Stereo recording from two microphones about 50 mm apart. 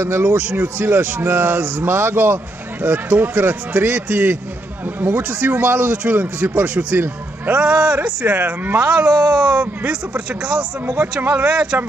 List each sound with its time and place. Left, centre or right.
0.0 s a man's voice: right
0.4 s a man's voice: right
8.4 s a man's voice: right
8.8 s speech: right